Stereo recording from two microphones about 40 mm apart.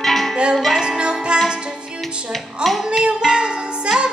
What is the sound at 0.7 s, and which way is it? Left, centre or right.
Music, right.